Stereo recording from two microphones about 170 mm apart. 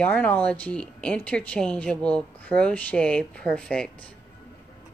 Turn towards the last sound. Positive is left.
turn(degrees=5)  # may be behind; listen again after turning